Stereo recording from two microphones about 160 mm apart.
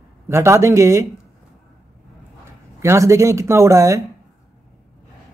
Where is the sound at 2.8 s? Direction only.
15° right (ahead or behind).